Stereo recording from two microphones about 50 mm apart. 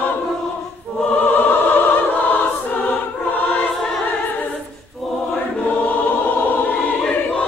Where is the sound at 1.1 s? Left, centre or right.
Left.